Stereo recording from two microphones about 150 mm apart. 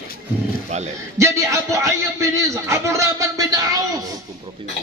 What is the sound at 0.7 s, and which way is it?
Speech, 50° right (ahead or behind).